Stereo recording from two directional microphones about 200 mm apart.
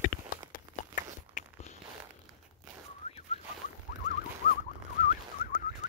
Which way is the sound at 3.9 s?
45° left (ahead or behind).